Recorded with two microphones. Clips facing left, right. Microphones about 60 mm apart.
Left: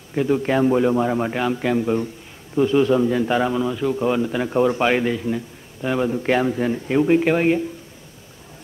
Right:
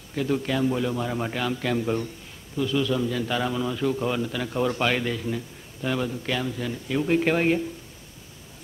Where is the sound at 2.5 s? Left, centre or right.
Left.